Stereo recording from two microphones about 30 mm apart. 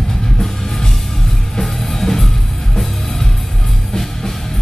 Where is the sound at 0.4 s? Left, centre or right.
Centre.